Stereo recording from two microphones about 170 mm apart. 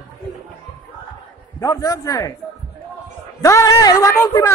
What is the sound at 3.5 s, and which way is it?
Speech, 20° left (ahead or behind).